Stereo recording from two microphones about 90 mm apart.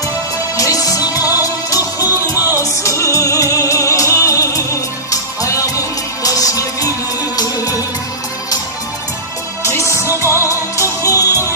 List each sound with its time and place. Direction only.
0.6 s music: 40° left (ahead or behind)
9.8 s music: 35° left (ahead or behind)